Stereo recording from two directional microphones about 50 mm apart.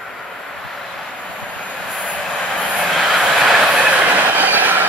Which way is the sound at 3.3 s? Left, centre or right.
Centre.